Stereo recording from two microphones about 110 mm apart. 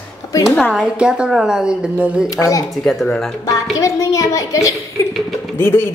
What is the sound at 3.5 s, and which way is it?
A man's voice, 30° left (ahead or behind).